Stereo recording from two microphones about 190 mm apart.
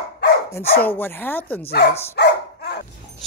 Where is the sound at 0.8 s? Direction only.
10° left (ahead or behind).